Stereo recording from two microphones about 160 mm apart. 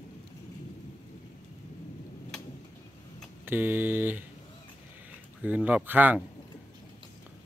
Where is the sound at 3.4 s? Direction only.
10° right (ahead or behind).